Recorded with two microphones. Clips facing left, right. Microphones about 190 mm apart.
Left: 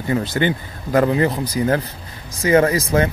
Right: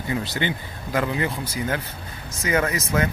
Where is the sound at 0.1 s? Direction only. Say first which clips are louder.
Left 7 dB; 45° left (ahead or behind).